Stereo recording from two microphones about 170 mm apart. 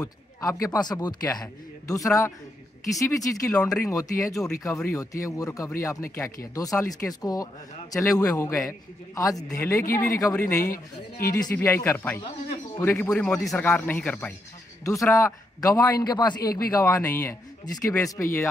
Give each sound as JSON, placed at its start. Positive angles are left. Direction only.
{"t": 0.4, "sound": "a man's voice", "side_deg": 20}
{"t": 11.2, "sound": "speech", "side_deg": 60}
{"t": 11.5, "sound": "a man's voice", "side_deg": 15}
{"t": 12.2, "sound": "a sound", "side_deg": 30}
{"t": 12.8, "sound": "a man's voice", "side_deg": 10}
{"t": 14.9, "sound": "a man's voice", "side_deg": 20}